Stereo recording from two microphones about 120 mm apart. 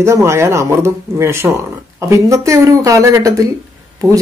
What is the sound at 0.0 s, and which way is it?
Speech, 20° right (ahead or behind).